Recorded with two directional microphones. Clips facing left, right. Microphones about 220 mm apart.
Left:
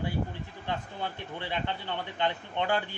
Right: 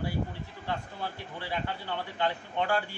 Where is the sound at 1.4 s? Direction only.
20° left (ahead or behind).